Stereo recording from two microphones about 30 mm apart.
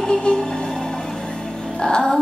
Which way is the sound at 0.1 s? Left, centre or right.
Left.